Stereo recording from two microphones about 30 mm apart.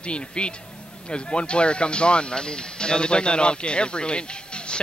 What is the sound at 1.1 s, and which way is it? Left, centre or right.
Speech, left.